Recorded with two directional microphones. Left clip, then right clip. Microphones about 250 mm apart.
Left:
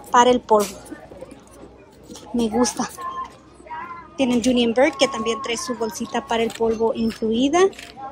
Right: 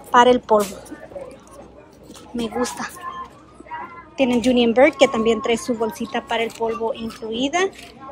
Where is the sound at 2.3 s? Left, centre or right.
Centre.